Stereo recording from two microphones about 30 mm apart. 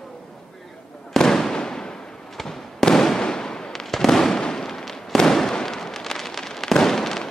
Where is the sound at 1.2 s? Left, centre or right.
Centre.